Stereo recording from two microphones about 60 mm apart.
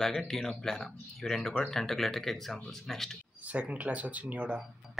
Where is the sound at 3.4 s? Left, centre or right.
Right.